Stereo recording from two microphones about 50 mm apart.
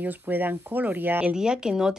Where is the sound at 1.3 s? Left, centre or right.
Centre.